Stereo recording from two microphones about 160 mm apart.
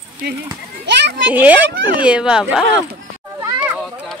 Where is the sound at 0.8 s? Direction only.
90° right.